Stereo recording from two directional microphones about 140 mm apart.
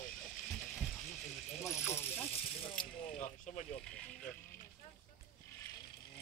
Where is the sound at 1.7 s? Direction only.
20° left (ahead or behind).